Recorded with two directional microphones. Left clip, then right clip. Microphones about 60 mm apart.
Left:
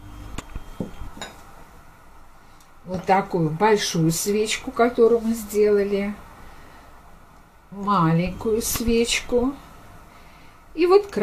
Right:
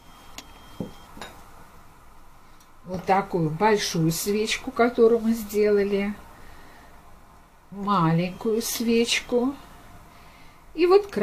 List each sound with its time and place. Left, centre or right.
0.8 s a sound: centre
3.3 s speech: right
7.8 s speech: right
10.8 s speech: right